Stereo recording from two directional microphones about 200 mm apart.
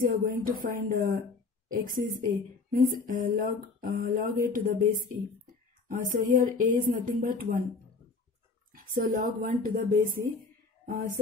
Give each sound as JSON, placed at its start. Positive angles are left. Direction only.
{"t": 0.0, "sound": "speech", "side_deg": -45}
{"t": 8.7, "sound": "speech", "side_deg": -40}